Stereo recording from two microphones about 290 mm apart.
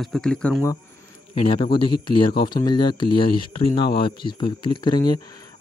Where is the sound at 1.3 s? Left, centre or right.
Centre.